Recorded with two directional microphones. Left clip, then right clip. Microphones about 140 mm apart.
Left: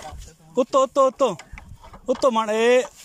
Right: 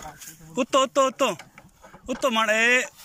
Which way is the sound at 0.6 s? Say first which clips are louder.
Left 3 dB; 35° left (ahead or behind).